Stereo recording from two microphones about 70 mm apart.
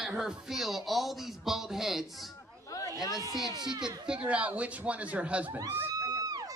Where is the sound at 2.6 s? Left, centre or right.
Left.